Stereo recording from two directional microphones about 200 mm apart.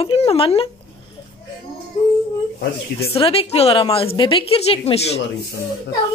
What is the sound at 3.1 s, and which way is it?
Speech, 30° left (ahead or behind).